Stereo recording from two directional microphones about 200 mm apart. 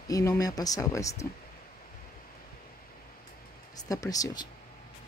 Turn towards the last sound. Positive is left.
turn(degrees=15)  # may be behind; listen again after turning